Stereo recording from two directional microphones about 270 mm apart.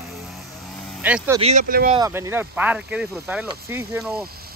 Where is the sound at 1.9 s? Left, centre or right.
Centre.